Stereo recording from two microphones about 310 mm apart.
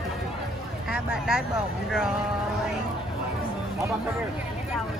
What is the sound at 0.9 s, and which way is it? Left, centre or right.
Speech, centre.